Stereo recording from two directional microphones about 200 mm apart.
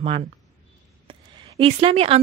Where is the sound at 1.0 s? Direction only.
25° right (ahead or behind).